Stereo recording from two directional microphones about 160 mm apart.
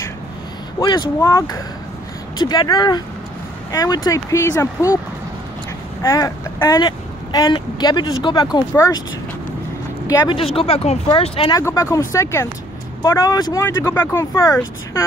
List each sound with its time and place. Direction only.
0.7 s speech: 25° left (ahead or behind)
6.0 s speech: 20° left (ahead or behind)
10.0 s speech: 25° left (ahead or behind)
10.4 s speech: 35° left (ahead or behind)
11.5 s speech: 20° left (ahead or behind)